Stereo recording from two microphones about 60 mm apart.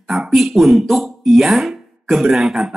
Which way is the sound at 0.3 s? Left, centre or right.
Centre.